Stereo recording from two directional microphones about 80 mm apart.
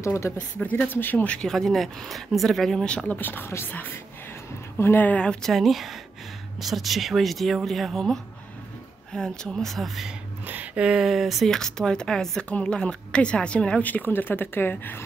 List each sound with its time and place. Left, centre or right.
0.0 s speech: left
0.4 s speech: centre
1.5 s speech: centre
3.2 s speech: left
5.5 s speech: centre
10.4 s speech: right; by 15.0 s left